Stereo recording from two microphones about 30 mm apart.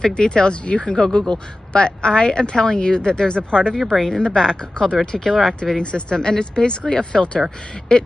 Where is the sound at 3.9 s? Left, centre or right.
Centre.